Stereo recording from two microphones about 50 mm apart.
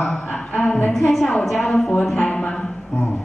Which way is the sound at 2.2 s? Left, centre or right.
Left.